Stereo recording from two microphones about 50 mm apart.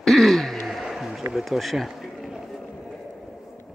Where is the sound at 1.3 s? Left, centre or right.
Centre.